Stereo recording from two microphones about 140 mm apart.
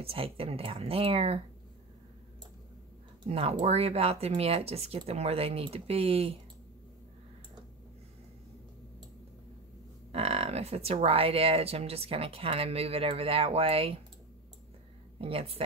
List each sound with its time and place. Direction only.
0.0 s speech: 40° right (ahead or behind)
3.3 s speech: 45° right (ahead or behind)
10.1 s speech: 45° right (ahead or behind)
15.1 s speech: 45° right (ahead or behind)